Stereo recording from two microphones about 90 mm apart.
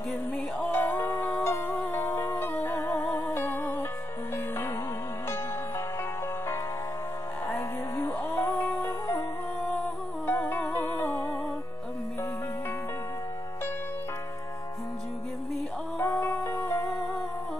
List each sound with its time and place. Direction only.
0.6 s music: 20° left (ahead or behind)
1.9 s music: 40° left (ahead or behind)
2.1 s music: 30° left (ahead or behind)
3.3 s music: 25° left (ahead or behind)
7.9 s music: 25° left (ahead or behind)
10.2 s music: 20° left (ahead or behind)
16.0 s music: 35° left (ahead or behind)